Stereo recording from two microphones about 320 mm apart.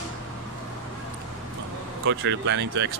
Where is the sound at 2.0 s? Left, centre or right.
Right.